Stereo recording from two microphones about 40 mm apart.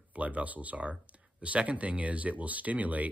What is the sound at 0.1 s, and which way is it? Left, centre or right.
Speech, right.